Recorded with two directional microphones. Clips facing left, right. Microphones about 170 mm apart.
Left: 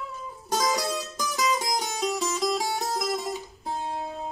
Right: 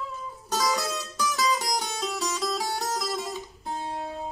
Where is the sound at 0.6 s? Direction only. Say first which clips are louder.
Left 1 dB; 15° left (ahead or behind).